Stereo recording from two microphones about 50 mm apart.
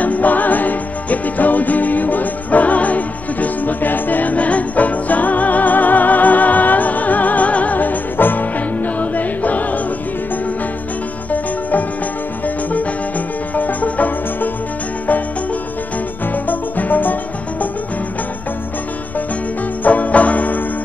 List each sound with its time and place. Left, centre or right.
0.0 s music: left
13.6 s music: left
16.4 s music: left
19.8 s music: left